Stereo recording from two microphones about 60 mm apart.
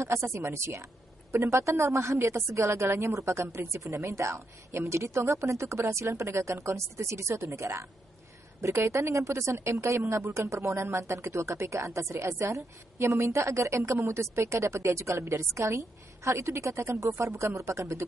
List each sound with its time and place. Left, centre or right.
0.0 s a woman's voice: right